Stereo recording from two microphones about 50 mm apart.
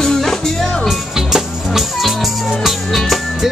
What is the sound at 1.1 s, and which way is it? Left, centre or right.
Music, centre.